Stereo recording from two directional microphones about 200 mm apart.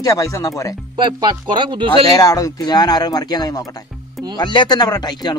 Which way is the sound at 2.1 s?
20° left (ahead or behind).